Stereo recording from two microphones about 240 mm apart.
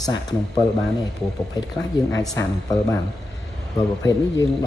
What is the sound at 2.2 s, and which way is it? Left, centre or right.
Speech, centre.